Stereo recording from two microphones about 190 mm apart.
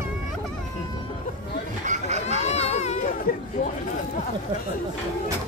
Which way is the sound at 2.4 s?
35° left (ahead or behind).